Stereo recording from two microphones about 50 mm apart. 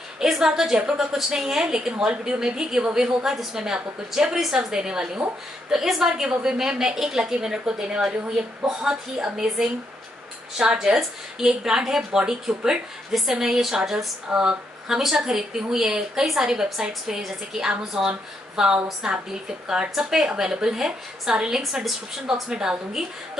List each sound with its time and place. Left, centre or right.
0.2 s a woman's voice: centre